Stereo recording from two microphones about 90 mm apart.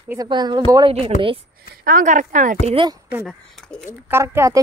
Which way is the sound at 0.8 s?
85° right.